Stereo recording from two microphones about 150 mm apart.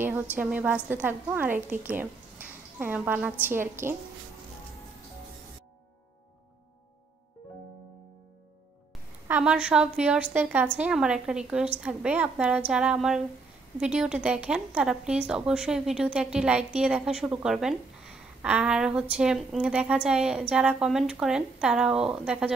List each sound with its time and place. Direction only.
0.4 s a woman's voice: 10° right (ahead or behind)
9.3 s a woman's voice: 5° right (ahead or behind)